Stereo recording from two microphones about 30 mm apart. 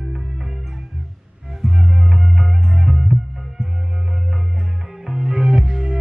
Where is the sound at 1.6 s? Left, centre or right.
Centre.